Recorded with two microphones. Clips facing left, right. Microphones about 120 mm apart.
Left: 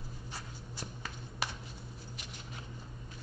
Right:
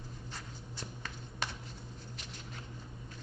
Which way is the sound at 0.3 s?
10° left (ahead or behind).